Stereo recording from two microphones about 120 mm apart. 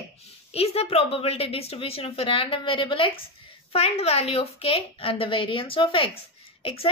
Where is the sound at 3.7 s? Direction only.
60° left (ahead or behind).